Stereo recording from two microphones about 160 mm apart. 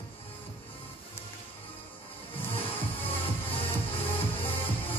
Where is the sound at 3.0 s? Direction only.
35° left (ahead or behind).